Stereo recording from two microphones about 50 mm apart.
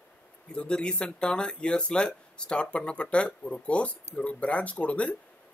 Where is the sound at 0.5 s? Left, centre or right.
Centre.